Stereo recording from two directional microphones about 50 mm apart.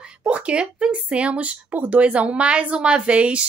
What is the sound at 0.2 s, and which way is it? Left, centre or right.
A woman's voice, right.